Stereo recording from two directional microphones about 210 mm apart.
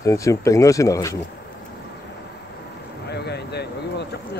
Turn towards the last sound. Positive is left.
turn(degrees=50)  # may be behind; listen again after turning